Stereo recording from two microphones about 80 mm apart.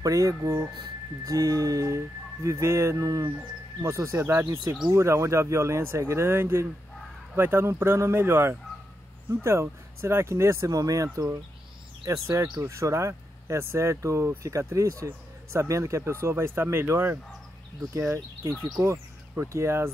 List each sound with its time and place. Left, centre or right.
0.0 s music: right
3.8 s speech: right
10.7 s music: right
12.1 s speech: right